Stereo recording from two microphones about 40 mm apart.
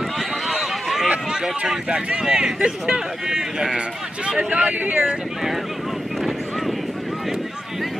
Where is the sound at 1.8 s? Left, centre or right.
Right.